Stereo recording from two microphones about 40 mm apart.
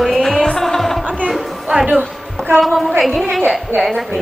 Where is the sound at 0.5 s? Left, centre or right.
Centre.